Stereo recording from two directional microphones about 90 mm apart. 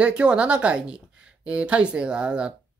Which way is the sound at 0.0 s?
10° right (ahead or behind).